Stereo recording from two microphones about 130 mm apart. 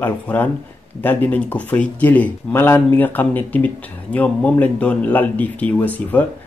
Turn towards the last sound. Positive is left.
turn(degrees=10)  # may be behind; listen again after turning